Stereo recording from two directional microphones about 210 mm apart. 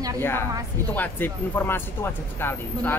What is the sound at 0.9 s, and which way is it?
Speech, 10° left (ahead or behind).